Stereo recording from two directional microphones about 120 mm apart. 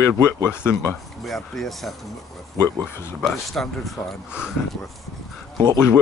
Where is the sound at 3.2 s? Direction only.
Centre (ahead or behind).